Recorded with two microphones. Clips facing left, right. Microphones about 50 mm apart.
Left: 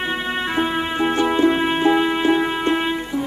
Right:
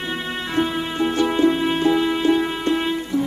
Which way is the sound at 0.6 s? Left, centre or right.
Left.